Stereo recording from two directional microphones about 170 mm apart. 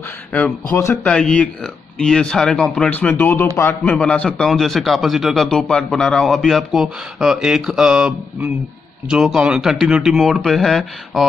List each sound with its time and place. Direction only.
0.3 s a man's voice: 10° left (ahead or behind)